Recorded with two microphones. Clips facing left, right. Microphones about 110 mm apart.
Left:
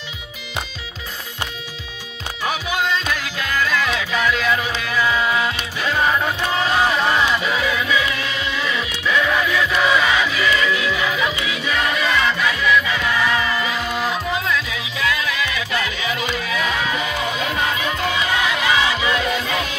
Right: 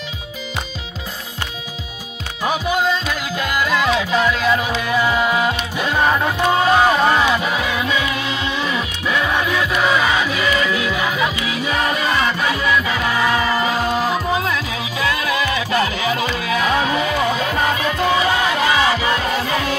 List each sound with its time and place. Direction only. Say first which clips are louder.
3.7 s music: right 4 dB; 30° right (ahead or behind)
4.9 s music: right 2 dB; 25° right (ahead or behind)
6.6 s music: right 4 dB; 40° right (ahead or behind)
7.6 s music: even; 30° right (ahead or behind)